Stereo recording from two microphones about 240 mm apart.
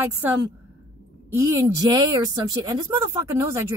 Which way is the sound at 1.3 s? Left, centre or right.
Centre.